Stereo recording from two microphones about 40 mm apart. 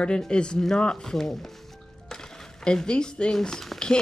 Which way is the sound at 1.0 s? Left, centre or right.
Centre.